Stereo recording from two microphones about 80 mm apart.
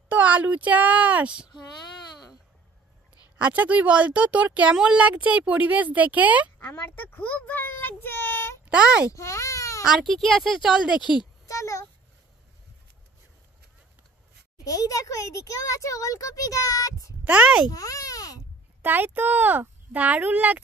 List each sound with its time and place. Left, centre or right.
0.1 s a child's voice: centre
3.3 s speech: centre
6.7 s a child's voice: left
8.6 s speech: centre
9.1 s speech: left
9.8 s speech: centre
10.7 s speech: centre
11.0 s speech: left
11.4 s a sound: left
14.6 s a child's voice: left
17.2 s speech: centre
17.6 s a child's voice: left
18.8 s speech: right